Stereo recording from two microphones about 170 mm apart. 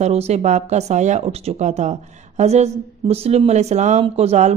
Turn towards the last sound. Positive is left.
turn(degrees=-40)  # may be behind; listen again after turning